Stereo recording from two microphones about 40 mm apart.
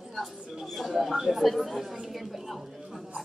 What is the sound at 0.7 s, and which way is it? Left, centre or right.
A woman's voice, centre.